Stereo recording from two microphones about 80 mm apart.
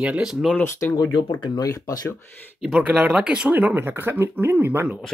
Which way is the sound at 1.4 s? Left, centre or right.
Left.